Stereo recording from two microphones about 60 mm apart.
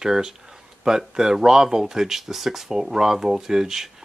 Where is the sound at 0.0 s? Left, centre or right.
Centre.